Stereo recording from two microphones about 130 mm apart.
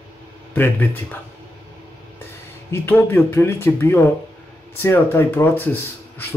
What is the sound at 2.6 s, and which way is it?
Speech, 15° left (ahead or behind).